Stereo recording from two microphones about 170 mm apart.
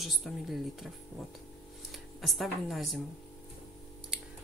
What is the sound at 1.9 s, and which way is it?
Speech, centre (ahead or behind).